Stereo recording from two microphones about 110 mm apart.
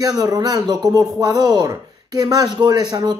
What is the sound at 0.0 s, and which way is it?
Speech, 35° right (ahead or behind).